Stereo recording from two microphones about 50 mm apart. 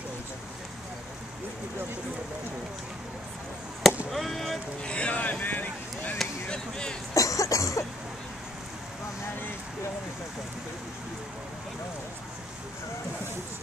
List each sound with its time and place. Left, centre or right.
4.1 s speech: centre
4.8 s speech: left
6.5 s speech: centre
7.2 s cough: left